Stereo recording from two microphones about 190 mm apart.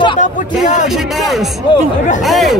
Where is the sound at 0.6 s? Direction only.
40° left (ahead or behind).